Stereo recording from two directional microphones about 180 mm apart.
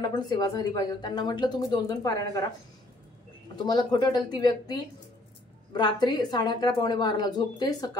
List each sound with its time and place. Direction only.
0.3 s a woman's voice: 20° left (ahead or behind)
3.5 s a woman's voice: 20° left (ahead or behind)